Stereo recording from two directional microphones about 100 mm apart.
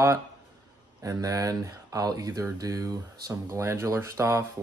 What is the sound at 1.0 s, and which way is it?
Speech, 35° right (ahead or behind).